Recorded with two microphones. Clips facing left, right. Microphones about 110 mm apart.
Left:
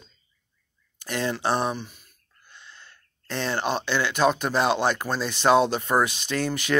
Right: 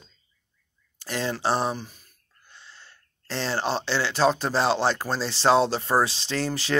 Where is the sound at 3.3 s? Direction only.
25° right (ahead or behind).